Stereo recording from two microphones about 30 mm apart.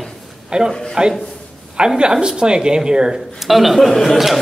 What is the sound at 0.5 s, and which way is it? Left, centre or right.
Speech, right.